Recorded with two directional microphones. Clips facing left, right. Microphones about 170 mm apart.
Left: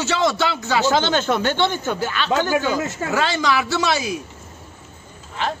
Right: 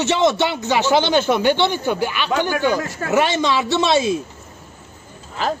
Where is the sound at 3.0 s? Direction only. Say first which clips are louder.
Right 4 dB; 20° right (ahead or behind).